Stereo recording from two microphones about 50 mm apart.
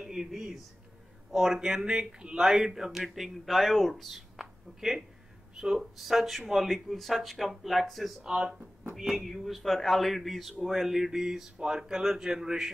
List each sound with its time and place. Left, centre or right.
0.0 s a man's voice: centre
8.2 s speech: centre
8.9 s speech: centre